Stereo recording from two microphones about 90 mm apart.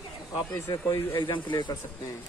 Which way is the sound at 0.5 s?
40° left (ahead or behind).